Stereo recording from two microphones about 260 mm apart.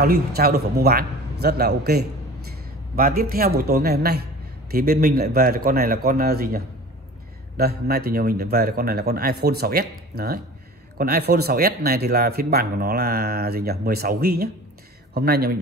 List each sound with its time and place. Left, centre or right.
0.0 s a man's voice: right